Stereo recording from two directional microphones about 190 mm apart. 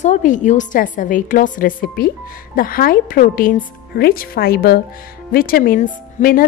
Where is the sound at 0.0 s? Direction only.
40° left (ahead or behind).